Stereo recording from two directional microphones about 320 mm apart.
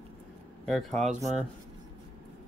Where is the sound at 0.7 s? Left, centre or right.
Centre.